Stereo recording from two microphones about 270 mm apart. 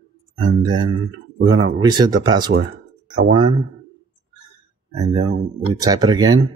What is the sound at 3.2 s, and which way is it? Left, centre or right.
Speech, right.